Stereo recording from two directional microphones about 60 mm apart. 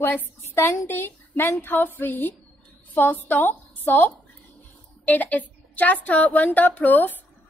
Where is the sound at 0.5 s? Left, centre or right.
Left.